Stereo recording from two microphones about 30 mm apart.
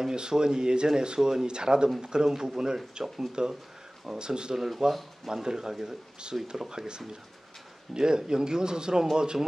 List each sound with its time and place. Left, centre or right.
0.1 s speech: right
4.6 s speech: centre
5.3 s speech: right